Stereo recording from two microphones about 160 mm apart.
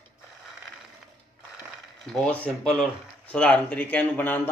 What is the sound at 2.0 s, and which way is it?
Speech, 5° left (ahead or behind).